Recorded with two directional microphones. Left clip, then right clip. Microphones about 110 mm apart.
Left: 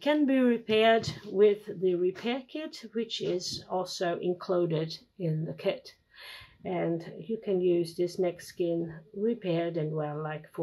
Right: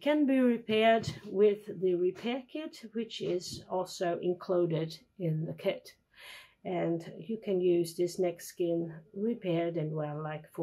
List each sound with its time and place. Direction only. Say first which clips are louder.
0.0 s speech: left 2 dB; 10° right (ahead or behind)